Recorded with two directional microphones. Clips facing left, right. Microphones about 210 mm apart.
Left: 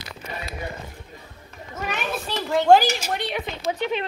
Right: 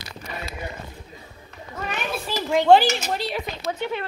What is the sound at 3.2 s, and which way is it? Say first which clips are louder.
Speech: even; centre (ahead or behind).